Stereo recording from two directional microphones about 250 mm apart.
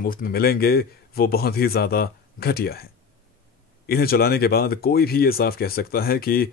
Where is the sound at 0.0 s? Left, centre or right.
Left.